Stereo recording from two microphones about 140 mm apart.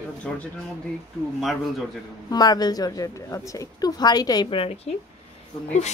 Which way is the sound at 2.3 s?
30° left (ahead or behind).